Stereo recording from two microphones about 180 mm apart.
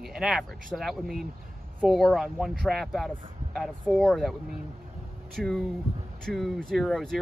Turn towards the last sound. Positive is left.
turn(degrees=0)  # may be behind; listen again after turning